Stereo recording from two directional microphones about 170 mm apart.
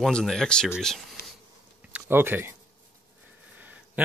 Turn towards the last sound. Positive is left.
turn(degrees=-10)  # may be behind; listen again after turning